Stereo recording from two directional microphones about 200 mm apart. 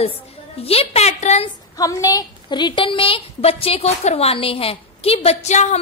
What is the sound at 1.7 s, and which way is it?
A woman's voice, 15° left (ahead or behind).